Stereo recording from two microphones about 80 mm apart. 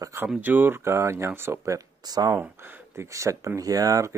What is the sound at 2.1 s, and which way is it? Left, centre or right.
Speech, right.